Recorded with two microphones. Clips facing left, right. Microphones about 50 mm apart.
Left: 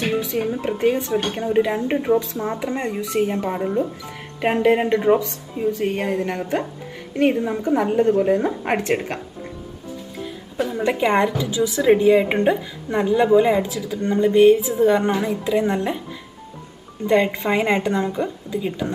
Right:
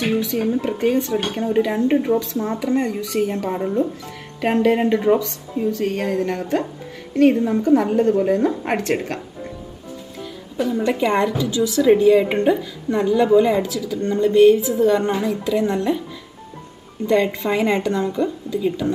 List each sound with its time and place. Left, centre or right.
0.3 s a woman's voice: centre
3.4 s a woman's voice: centre
10.6 s a woman's voice: centre
17.1 s a woman's voice: left